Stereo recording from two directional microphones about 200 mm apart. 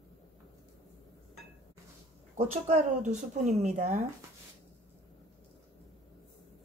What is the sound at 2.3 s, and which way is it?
Speech, 35° right (ahead or behind).